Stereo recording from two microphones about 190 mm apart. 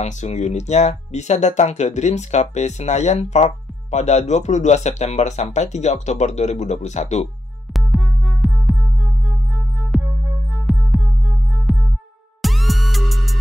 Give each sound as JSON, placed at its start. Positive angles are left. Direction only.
{"t": 0.0, "sound": "speech", "side_deg": 35}
{"t": 7.7, "sound": "music", "side_deg": 0}
{"t": 9.8, "sound": "music", "side_deg": 0}